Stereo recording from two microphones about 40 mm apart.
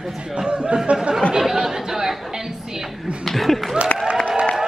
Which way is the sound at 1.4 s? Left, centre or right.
Centre.